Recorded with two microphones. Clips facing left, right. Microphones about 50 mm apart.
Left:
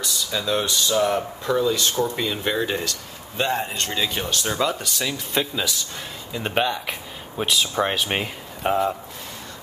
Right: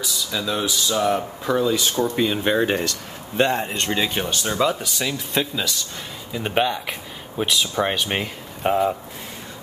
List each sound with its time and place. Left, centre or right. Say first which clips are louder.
0.0 s speech: even; centre
2.6 s speech: right 4 dB; right
3.5 s speech: right 2 dB; centre
4.4 s speech: right 3 dB; centre